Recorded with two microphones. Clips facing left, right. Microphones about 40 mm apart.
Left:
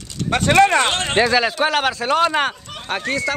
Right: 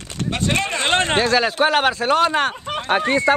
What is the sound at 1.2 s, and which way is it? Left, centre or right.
Speech, centre.